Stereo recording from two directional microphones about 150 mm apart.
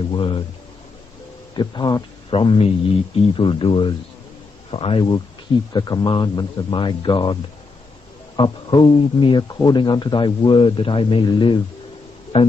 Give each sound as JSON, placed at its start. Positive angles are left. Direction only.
{"t": 0.1, "sound": "speech", "side_deg": 35}
{"t": 1.5, "sound": "speech", "side_deg": 30}
{"t": 8.4, "sound": "speech", "side_deg": 30}
{"t": 12.3, "sound": "speech", "side_deg": 45}